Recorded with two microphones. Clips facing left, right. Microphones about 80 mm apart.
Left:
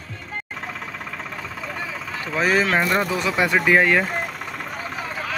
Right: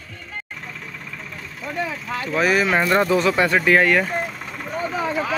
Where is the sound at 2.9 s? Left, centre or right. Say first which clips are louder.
Right 4 dB; centre.